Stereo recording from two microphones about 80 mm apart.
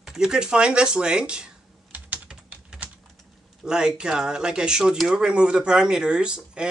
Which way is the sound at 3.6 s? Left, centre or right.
Centre.